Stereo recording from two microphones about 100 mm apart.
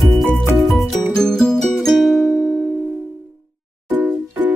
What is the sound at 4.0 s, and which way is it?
Music, 15° right (ahead or behind).